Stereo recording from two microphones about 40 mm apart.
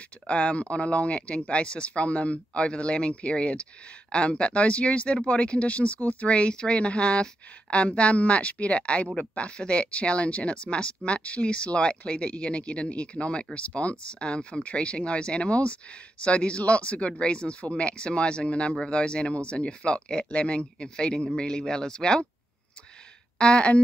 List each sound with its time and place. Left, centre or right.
0.3 s speech: left
23.3 s speech: left